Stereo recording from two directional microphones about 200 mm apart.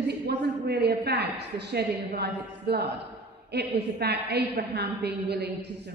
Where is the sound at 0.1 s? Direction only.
55° right (ahead or behind).